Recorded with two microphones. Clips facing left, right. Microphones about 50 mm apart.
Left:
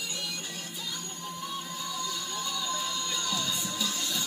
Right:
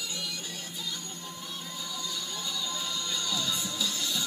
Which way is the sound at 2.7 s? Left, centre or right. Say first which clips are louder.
Left 2 dB; left.